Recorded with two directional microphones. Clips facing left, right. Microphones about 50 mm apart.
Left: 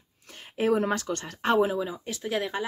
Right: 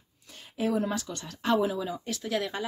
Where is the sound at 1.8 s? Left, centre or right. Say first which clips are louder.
Left 1 dB; centre.